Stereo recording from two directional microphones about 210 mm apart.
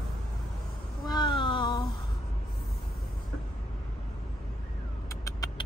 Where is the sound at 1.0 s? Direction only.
20° left (ahead or behind).